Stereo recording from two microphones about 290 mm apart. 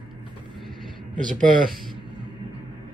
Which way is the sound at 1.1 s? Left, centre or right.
Right.